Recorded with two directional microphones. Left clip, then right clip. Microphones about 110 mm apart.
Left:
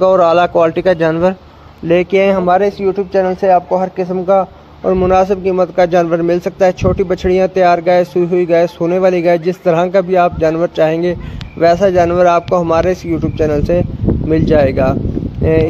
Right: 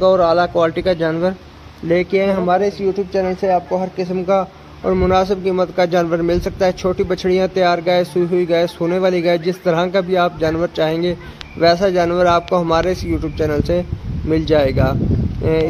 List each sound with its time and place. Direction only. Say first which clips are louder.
0.0 s speech: left 4 dB; 40° left (ahead or behind)
2.3 s speech: left 4 dB; 25° left (ahead or behind)
3.9 s a man's voice: left 3 dB; 15° left (ahead or behind)
5.1 s speech: left 4 dB; 35° left (ahead or behind)